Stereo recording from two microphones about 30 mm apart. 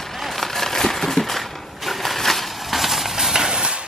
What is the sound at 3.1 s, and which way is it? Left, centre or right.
Clip-clop, centre.